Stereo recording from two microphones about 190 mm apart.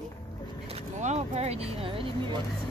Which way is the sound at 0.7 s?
35° right (ahead or behind).